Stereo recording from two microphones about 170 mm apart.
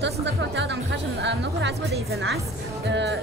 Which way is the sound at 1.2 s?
90° right.